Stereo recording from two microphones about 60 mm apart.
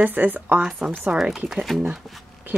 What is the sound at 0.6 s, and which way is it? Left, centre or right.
A woman's voice, centre.